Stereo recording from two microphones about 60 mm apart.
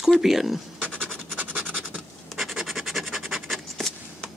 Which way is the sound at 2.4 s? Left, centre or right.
Centre.